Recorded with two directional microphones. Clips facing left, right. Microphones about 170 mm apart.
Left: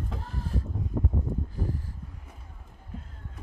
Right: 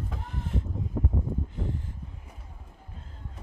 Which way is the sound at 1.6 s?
20° right (ahead or behind).